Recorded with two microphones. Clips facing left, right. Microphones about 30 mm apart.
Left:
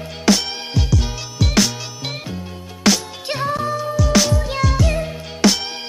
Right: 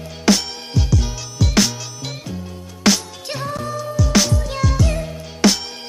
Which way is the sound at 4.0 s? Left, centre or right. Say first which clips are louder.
Even; centre.